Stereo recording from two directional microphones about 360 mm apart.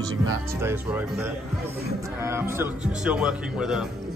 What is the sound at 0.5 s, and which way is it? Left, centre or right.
A man's voice, centre.